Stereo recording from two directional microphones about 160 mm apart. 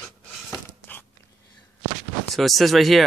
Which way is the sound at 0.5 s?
10° left (ahead or behind).